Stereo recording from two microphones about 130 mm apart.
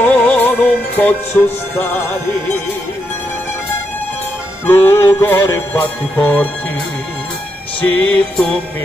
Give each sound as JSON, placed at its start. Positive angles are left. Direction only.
{"t": 0.0, "sound": "music", "side_deg": 15}
{"t": 4.6, "sound": "music", "side_deg": 15}
{"t": 7.9, "sound": "music", "side_deg": 10}